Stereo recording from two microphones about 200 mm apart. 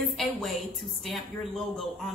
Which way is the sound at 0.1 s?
Centre (ahead or behind).